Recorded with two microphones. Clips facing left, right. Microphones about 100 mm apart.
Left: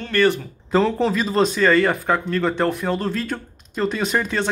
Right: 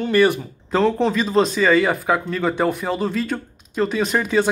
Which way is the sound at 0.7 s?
Centre (ahead or behind).